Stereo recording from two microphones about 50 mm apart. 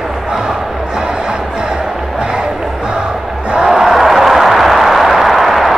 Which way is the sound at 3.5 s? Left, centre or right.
Centre.